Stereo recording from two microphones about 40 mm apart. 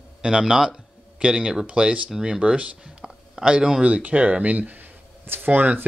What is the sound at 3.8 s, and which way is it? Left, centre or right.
Speech, right.